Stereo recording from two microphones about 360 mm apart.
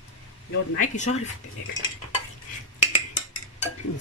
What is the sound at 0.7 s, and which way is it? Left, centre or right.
Speech, centre.